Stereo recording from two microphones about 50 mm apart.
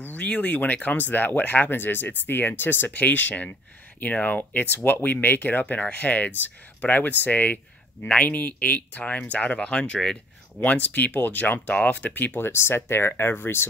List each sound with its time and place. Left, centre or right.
0.0 s speech: left
10.6 s speech: left